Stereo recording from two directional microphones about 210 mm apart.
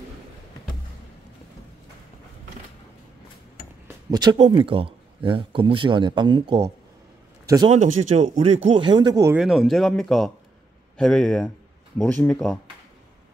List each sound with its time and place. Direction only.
3.8 s speech: 20° right (ahead or behind)
7.7 s speech: 35° right (ahead or behind); by 9.4 s 15° right (ahead or behind)
9.4 s speech: centre (ahead or behind)